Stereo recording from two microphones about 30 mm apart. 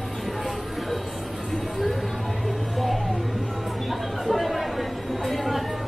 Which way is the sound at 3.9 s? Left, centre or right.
Centre.